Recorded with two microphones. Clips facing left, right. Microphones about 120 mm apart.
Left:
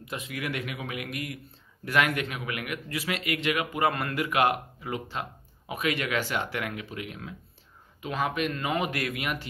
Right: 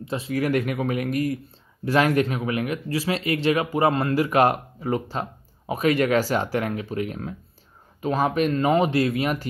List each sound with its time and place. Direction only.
0.0 s speech: 30° right (ahead or behind)